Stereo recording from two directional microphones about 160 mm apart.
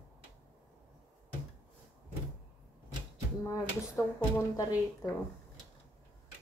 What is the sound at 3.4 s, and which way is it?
Speech, 20° left (ahead or behind).